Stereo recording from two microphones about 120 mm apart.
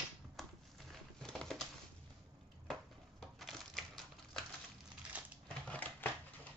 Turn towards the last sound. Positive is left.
turn(degrees=15)  # may be behind; listen again after turning